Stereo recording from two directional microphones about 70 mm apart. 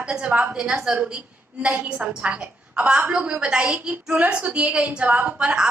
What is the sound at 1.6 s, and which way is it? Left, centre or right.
A woman's voice, centre.